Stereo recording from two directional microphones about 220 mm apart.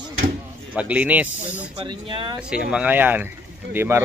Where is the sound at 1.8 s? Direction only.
20° right (ahead or behind).